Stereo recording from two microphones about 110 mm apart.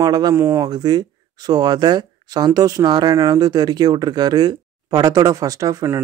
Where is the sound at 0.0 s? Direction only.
35° right (ahead or behind).